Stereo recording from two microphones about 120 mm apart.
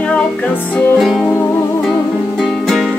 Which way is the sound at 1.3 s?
20° left (ahead or behind).